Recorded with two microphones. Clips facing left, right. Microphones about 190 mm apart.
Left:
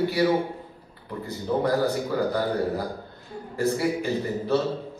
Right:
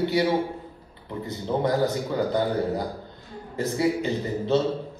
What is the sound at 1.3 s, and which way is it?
A man's voice, 20° right (ahead or behind).